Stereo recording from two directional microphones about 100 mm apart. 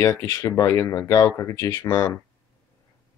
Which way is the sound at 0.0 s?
35° left (ahead or behind).